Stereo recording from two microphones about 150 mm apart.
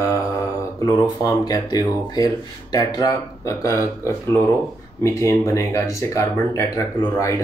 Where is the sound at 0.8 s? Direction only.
25° left (ahead or behind).